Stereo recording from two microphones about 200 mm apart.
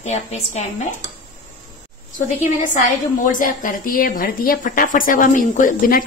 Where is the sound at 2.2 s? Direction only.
40° left (ahead or behind).